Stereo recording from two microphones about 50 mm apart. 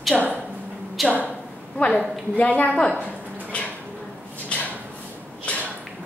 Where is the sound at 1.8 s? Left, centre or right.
Left.